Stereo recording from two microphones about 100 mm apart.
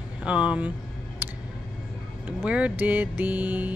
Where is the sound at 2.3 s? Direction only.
10° right (ahead or behind).